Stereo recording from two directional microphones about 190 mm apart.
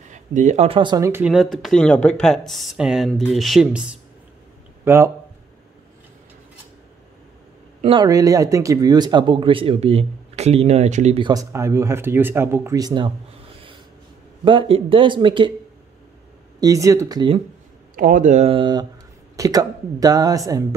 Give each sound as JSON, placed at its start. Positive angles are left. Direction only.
{"t": 0.1, "sound": "speech", "side_deg": -40}
{"t": 1.2, "sound": "speech", "side_deg": 0}
{"t": 7.8, "sound": "speech", "side_deg": -25}
{"t": 11.2, "sound": "speech", "side_deg": -15}
{"t": 14.4, "sound": "speech", "side_deg": -25}
{"t": 16.5, "sound": "speech", "side_deg": -20}
{"t": 17.9, "sound": "speech", "side_deg": -45}